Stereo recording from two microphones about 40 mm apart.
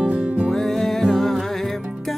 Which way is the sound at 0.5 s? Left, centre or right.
Centre.